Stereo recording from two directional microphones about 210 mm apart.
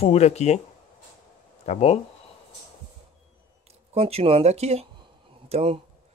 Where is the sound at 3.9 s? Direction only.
30° right (ahead or behind).